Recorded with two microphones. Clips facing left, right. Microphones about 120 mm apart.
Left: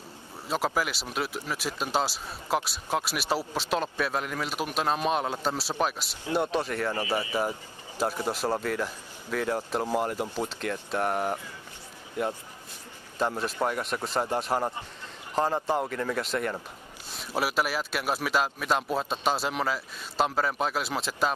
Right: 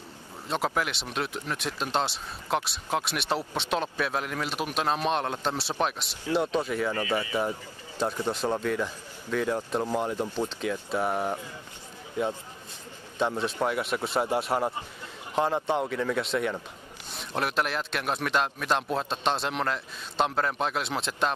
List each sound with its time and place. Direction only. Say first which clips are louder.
0.5 s speech: even; centre (ahead or behind)
6.9 s speech: right 1 dB; 25° left (ahead or behind)
8.0 s speech: even; 5° left (ahead or behind)
13.2 s speech: right 1 dB; 5° left (ahead or behind)